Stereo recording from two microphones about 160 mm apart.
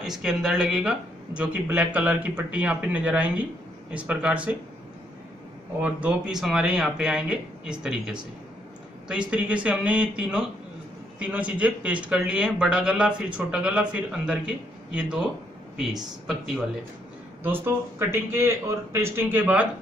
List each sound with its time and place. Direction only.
0.0 s speech: 5° right (ahead or behind)
5.8 s speech: 10° right (ahead or behind)
9.3 s speech: 10° right (ahead or behind)
16.3 s speech: 5° right (ahead or behind)
17.4 s speech: 15° right (ahead or behind)